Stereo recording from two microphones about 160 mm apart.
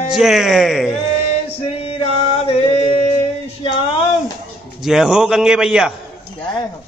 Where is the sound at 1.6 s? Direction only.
40° left (ahead or behind).